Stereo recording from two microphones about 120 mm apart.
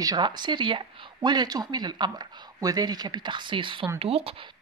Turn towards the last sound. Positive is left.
turn(degrees=-55)  # may be behind; listen again after turning